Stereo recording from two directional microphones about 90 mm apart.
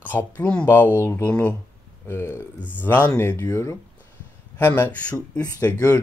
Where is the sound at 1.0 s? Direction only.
25° left (ahead or behind).